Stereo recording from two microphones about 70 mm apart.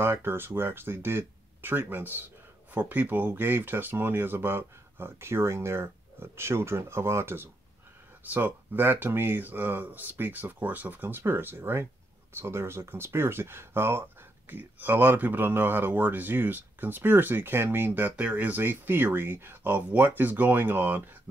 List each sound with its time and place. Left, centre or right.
0.0 s speech: right
8.3 s speech: right